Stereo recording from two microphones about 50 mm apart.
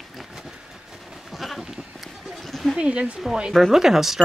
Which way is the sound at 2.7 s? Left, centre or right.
Right.